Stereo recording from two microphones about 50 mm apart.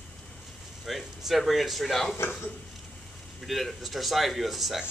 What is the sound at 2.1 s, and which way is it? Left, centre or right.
Speech, left.